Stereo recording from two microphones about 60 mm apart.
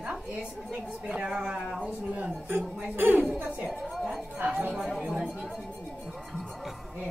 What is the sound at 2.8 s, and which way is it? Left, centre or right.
Speech, right.